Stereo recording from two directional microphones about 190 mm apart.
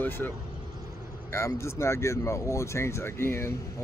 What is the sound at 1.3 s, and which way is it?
Speech, 15° left (ahead or behind).